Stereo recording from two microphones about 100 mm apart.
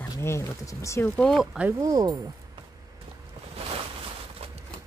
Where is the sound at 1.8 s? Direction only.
40° right (ahead or behind).